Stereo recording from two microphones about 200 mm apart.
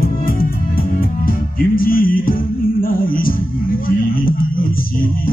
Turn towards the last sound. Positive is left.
turn(degrees=45)  # may be behind; listen again after turning